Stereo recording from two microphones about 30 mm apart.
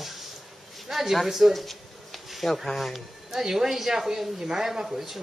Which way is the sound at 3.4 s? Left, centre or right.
Centre.